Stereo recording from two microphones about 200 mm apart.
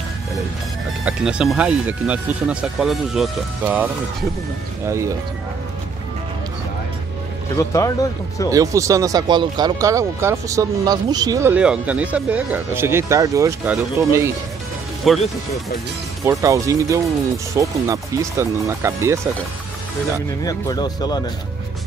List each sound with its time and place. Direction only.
1.0 s speech: 5° right (ahead or behind)
7.5 s speech: 15° left (ahead or behind)
8.5 s speech: 15° right (ahead or behind)
15.0 s speech: centre (ahead or behind)
16.3 s speech: 15° right (ahead or behind)
20.4 s speech: 20° left (ahead or behind)